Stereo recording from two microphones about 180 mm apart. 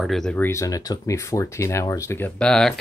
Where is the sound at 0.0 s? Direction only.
Centre (ahead or behind).